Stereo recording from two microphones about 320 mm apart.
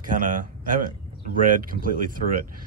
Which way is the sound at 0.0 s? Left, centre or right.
Right.